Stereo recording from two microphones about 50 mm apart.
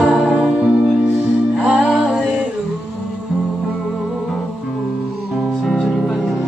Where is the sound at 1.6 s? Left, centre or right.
Centre.